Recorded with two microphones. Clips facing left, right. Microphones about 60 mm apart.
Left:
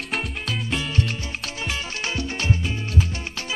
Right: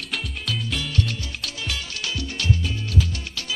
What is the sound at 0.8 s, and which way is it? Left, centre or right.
Music, left.